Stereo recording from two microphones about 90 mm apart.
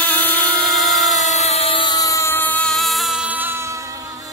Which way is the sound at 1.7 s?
60° left (ahead or behind).